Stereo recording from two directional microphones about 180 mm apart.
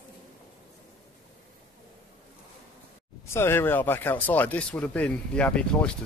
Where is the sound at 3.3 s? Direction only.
15° left (ahead or behind).